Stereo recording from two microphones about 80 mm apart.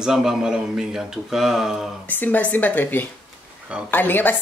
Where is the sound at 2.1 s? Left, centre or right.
Left.